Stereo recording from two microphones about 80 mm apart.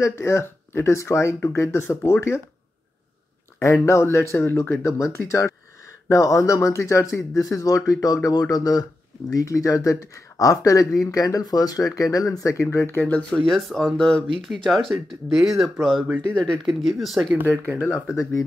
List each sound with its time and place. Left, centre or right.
0.0 s speech: left
3.5 s speech: left
13.3 s speech: centre
18.1 s speech: left